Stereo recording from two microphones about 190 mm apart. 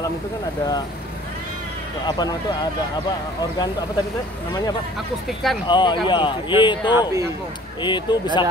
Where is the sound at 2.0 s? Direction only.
20° left (ahead or behind).